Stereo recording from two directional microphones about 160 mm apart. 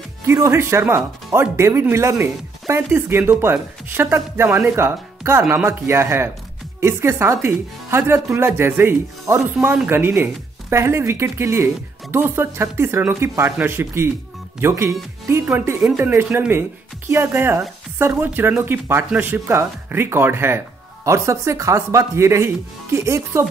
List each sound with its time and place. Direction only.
0.3 s speech: 15° right (ahead or behind)